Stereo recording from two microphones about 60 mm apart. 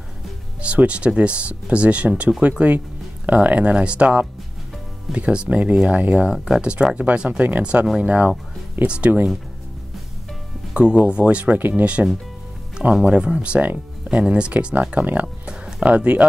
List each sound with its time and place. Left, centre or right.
0.6 s speech: right
6.3 s speech: centre
10.7 s speech: centre
15.4 s music: centre